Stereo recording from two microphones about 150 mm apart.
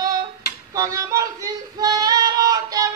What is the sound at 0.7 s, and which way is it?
Female singing, 20° right (ahead or behind).